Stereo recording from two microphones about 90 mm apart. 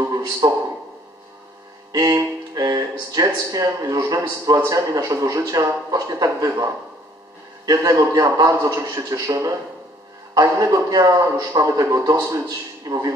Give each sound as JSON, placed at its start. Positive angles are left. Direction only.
{"t": 0.4, "sound": "a man's voice", "side_deg": -40}
{"t": 1.9, "sound": "music", "side_deg": -45}
{"t": 2.5, "sound": "a man's voice", "side_deg": -45}